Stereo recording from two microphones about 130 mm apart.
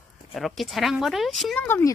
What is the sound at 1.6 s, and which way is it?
Speech, 15° left (ahead or behind).